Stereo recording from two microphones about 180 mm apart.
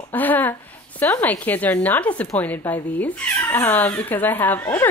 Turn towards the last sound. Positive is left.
turn(degrees=10)  # may be behind; listen again after turning